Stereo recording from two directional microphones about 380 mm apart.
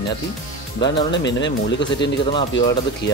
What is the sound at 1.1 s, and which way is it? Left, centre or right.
Speech, left.